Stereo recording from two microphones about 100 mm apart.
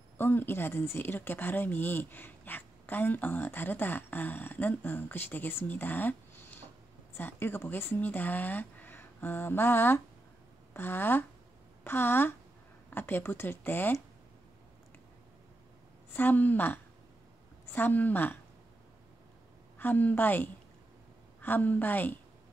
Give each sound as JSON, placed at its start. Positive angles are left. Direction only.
{"t": 0.2, "sound": "speech", "side_deg": 20}
{"t": 16.1, "sound": "speech", "side_deg": 20}
{"t": 19.8, "sound": "speech", "side_deg": 20}